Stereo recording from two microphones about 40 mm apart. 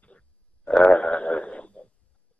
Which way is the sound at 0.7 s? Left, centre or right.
Left.